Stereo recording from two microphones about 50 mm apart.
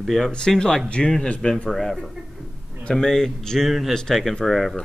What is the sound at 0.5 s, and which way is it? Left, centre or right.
Speech, centre.